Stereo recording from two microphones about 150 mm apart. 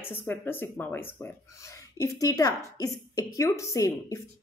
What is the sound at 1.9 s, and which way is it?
A woman's voice, 25° left (ahead or behind).